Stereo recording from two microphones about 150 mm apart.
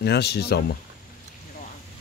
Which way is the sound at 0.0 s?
90° left.